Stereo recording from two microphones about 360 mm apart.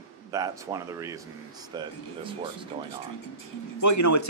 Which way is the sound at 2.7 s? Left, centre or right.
Centre.